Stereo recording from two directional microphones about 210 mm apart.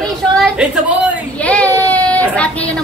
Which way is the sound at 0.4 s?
Centre (ahead or behind).